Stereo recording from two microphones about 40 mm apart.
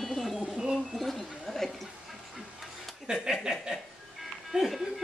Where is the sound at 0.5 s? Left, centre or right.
Centre.